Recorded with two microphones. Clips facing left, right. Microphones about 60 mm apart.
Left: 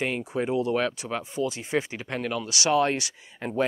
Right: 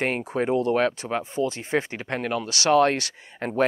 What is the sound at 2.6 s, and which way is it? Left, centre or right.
Speech, right.